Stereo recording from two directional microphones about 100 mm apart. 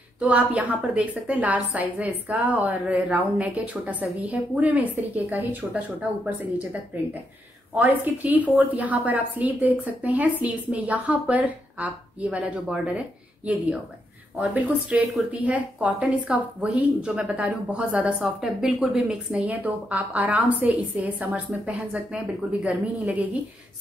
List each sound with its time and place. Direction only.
0.2 s speech: 15° right (ahead or behind)
7.7 s speech: 15° right (ahead or behind)